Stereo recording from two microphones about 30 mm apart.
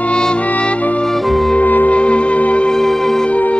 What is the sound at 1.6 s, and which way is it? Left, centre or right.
Music, left.